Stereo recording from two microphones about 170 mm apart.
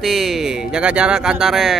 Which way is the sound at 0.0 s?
Centre (ahead or behind).